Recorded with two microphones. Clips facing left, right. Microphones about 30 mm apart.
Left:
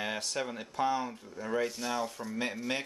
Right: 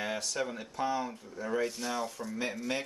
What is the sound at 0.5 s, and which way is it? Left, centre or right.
Speech, centre.